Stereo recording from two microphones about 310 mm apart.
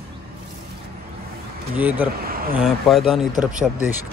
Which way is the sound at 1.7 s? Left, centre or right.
Centre.